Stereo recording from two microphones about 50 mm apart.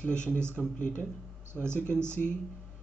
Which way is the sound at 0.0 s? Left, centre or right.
Centre.